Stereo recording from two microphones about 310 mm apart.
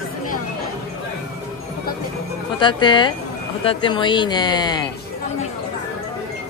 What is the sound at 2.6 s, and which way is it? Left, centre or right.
Speech, centre.